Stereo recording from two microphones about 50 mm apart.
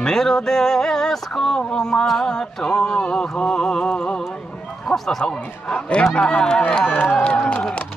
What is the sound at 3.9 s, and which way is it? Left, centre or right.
Speech, left.